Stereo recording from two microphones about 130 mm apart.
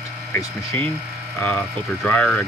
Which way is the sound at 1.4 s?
10° left (ahead or behind).